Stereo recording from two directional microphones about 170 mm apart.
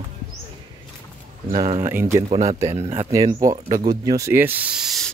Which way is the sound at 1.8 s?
15° right (ahead or behind).